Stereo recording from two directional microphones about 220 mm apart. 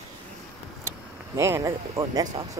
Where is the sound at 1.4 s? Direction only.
15° right (ahead or behind).